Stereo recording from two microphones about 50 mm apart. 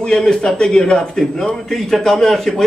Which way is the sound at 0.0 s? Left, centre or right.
Centre.